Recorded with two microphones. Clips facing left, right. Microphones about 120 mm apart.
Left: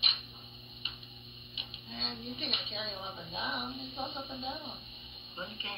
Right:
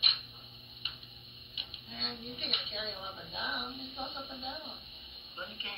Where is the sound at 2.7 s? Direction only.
25° left (ahead or behind).